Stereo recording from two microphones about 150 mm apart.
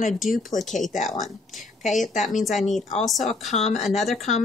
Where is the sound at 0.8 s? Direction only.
55° left (ahead or behind).